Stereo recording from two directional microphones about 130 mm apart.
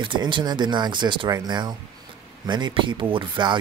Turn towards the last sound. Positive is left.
turn(degrees=-40)  # may be behind; listen again after turning